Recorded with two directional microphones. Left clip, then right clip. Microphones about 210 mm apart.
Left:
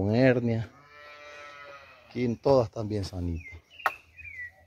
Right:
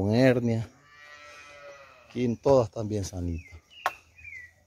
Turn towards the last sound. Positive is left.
turn(degrees=-15)  # may be behind; listen again after turning